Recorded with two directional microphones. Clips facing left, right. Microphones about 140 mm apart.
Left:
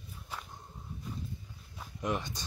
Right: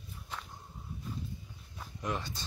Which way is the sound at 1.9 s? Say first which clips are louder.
Left 3 dB; 20° left (ahead or behind).